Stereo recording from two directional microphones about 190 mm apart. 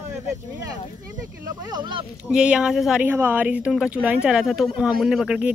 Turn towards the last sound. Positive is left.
turn(degrees=-5)  # may be behind; listen again after turning